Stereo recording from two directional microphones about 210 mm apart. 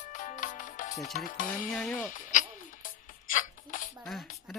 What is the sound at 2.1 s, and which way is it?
Music, 40° left (ahead or behind).